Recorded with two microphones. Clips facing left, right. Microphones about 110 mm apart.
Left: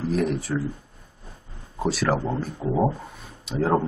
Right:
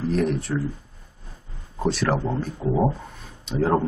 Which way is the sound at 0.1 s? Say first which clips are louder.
Even; centre (ahead or behind).